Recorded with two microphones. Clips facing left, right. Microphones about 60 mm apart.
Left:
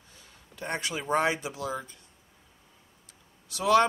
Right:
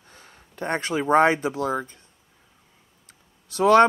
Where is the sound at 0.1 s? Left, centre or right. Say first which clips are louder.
Right 6 dB; right.